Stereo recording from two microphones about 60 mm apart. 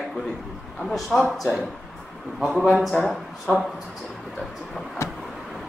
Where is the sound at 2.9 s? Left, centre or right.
Centre.